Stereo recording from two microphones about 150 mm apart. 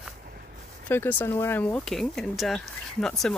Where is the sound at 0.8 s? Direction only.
10° left (ahead or behind).